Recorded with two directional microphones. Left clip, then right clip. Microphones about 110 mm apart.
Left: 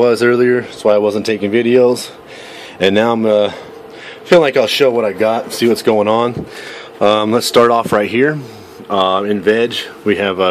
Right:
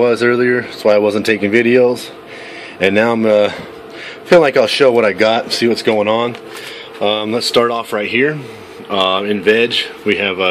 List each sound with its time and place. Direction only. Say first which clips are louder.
0.0 s speech: left 1 dB; 20° left (ahead or behind)
0.8 s speech: right 1 dB; centre (ahead or behind)
2.8 s speech: even; 15° left (ahead or behind)
3.2 s speech: right 1 dB; 5° left (ahead or behind); by 6.3 s 20° left (ahead or behind)
7.0 s speech: left 4 dB; 45° left (ahead or behind)
8.8 s speech: left 1 dB; 10° left (ahead or behind)